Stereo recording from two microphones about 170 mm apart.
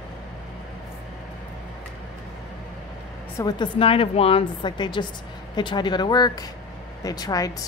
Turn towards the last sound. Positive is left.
turn(degrees=20)  # may be behind; listen again after turning